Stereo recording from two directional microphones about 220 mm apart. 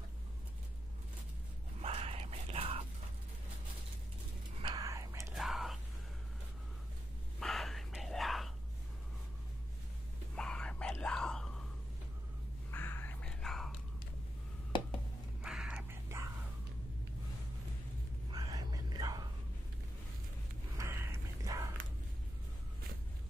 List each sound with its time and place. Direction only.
1.8 s whispering: 25° right (ahead or behind)
4.6 s whispering: 20° right (ahead or behind)
5.3 s whispering: centre (ahead or behind)
7.3 s whispering: centre (ahead or behind)
10.3 s whispering: 5° left (ahead or behind)
12.7 s whispering: 10° left (ahead or behind)
15.4 s whispering: 5° right (ahead or behind)
18.3 s whispering: 15° right (ahead or behind)
20.7 s a sound: 10° right (ahead or behind)